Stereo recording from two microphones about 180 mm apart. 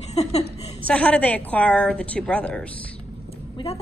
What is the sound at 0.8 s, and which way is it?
A woman's voice, 5° left (ahead or behind).